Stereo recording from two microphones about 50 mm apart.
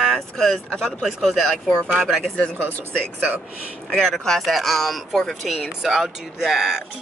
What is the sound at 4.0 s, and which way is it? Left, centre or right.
Speech, centre.